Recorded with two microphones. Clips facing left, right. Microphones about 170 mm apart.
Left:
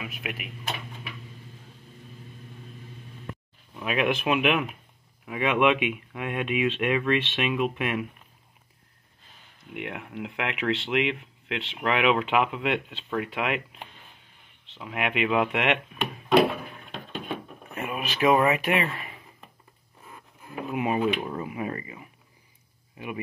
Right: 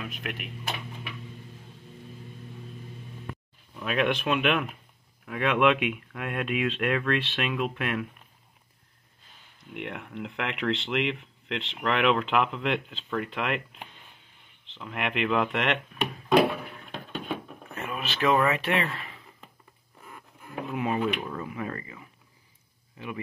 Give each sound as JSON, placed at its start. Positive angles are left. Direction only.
{"t": 0.0, "sound": "speech", "side_deg": 5}
{"t": 3.8, "sound": "speech", "side_deg": 5}
{"t": 9.8, "sound": "speech", "side_deg": 5}
{"t": 17.7, "sound": "speech", "side_deg": 10}